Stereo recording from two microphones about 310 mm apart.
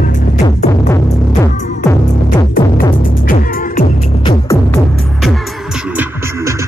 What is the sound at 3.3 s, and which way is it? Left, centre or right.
Music, left.